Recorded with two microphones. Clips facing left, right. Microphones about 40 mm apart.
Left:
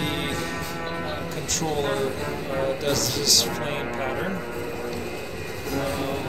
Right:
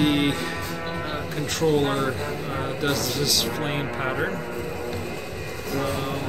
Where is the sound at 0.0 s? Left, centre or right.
Right.